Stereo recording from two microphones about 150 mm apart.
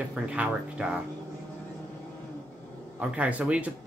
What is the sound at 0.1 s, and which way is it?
Speech, 10° right (ahead or behind).